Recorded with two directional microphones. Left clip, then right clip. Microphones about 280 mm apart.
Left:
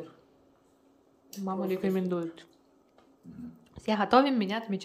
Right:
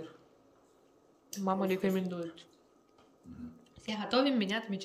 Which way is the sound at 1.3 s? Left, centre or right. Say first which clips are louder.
Even; centre.